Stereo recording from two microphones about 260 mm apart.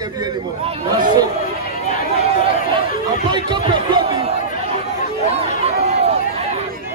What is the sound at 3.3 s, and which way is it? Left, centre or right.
Speech, centre.